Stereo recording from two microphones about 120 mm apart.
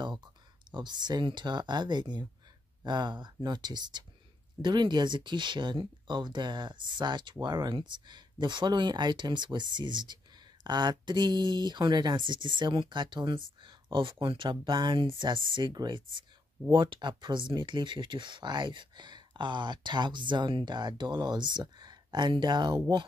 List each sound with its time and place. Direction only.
0.0 s speech: 40° right (ahead or behind)